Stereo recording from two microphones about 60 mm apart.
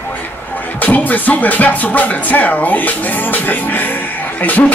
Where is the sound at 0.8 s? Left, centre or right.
Left.